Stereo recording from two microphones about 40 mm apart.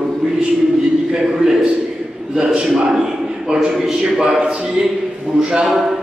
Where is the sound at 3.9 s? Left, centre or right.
Centre.